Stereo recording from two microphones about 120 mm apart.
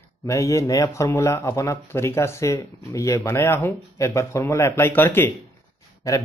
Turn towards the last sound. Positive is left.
turn(degrees=25)  # may be behind; listen again after turning